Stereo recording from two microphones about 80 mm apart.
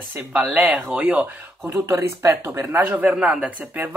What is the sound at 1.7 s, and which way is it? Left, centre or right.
Speech, right.